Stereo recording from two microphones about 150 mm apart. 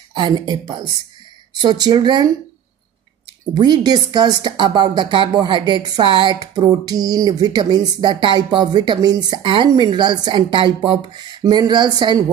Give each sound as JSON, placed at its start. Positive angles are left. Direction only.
{"t": 0.1, "sound": "a woman's voice", "side_deg": -30}
{"t": 3.5, "sound": "speech", "side_deg": -30}